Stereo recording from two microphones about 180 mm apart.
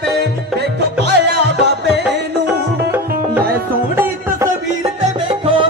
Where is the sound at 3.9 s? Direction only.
15° right (ahead or behind); by 5.7 s 30° right (ahead or behind).